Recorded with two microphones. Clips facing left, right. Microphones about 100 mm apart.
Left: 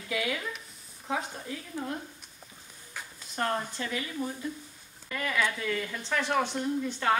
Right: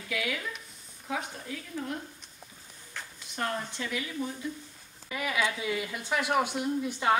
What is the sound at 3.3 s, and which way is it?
Speech, 40° left (ahead or behind).